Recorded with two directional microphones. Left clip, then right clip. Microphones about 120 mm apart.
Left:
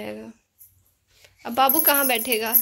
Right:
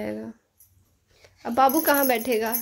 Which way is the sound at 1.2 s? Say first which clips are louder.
Even; 25° right (ahead or behind).